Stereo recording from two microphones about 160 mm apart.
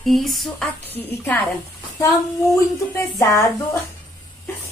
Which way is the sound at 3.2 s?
20° left (ahead or behind).